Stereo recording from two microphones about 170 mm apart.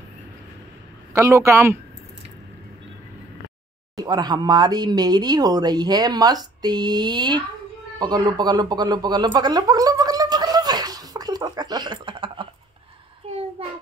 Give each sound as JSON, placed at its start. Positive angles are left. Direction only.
{"t": 1.1, "sound": "a man's voice", "side_deg": -15}
{"t": 3.9, "sound": "speech", "side_deg": -25}
{"t": 8.0, "sound": "a sound", "side_deg": -25}
{"t": 13.6, "sound": "child singing", "side_deg": -35}